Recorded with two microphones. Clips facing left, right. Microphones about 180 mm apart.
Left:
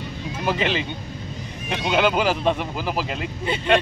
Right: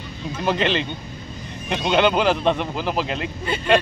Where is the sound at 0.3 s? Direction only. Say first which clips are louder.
Right 2 dB; 5° left (ahead or behind).